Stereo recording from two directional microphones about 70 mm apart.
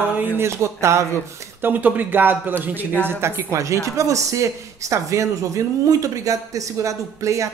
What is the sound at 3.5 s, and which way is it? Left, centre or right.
Speech, right.